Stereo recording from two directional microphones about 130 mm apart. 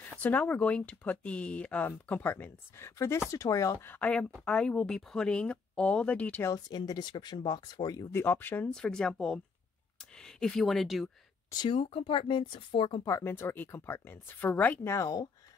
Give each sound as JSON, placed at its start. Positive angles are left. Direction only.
{"t": 0.0, "sound": "speech", "side_deg": 15}
{"t": 6.5, "sound": "speech", "side_deg": 30}
{"t": 11.5, "sound": "speech", "side_deg": 40}
{"t": 13.0, "sound": "speech", "side_deg": 20}